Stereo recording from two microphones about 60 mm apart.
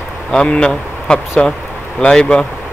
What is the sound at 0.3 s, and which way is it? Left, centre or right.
Speech, centre.